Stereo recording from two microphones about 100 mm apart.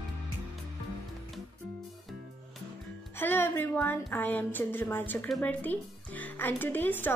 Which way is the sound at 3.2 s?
20° left (ahead or behind).